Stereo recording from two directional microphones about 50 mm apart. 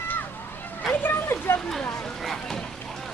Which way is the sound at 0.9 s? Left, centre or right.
Left.